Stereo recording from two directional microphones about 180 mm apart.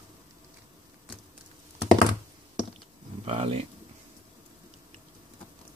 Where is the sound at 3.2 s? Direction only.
30° right (ahead or behind).